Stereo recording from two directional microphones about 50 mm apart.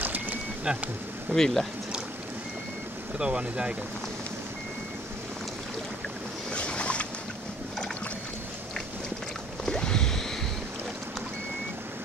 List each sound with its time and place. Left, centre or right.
0.0 s insect: right
0.7 s speech: centre
1.3 s speech: centre
3.2 s speech: centre
6.5 s boat: left
9.7 s boat: centre